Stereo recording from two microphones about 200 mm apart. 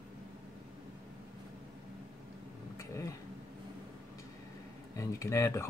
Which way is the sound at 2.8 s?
15° left (ahead or behind).